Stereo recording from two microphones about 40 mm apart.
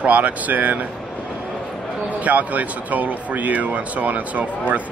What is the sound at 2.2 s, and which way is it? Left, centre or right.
Speech, right.